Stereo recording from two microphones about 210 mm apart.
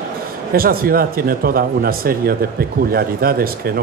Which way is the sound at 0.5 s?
45° right (ahead or behind).